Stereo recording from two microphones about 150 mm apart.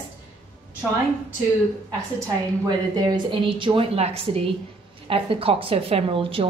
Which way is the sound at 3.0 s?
30° right (ahead or behind).